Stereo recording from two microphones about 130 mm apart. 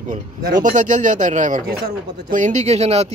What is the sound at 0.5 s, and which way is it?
Speech, 90° right.